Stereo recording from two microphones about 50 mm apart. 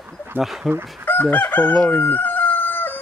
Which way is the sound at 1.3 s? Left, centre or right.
Left.